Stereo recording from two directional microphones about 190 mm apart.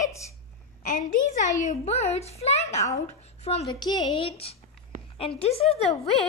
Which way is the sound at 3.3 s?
35° left (ahead or behind).